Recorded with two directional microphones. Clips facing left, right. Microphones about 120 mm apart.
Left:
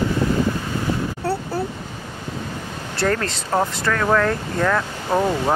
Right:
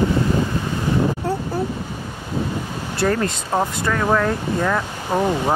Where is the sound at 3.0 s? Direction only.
20° right (ahead or behind).